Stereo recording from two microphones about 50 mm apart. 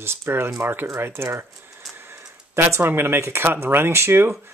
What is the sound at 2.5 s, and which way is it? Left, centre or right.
Speech, right.